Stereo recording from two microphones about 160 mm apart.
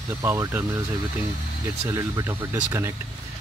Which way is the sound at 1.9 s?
20° right (ahead or behind).